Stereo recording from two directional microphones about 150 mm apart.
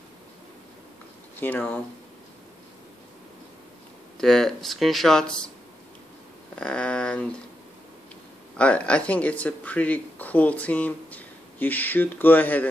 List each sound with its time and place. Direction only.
1.4 s speech: 10° left (ahead or behind)
4.2 s speech: 5° left (ahead or behind)
6.5 s a sound: 5° left (ahead or behind)
8.5 s speech: 10° left (ahead or behind)